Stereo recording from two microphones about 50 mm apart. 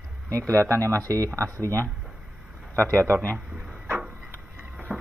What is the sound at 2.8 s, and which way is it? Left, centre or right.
Speech, right.